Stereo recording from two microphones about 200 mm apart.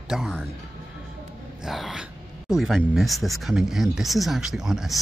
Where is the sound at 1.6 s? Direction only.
Centre (ahead or behind).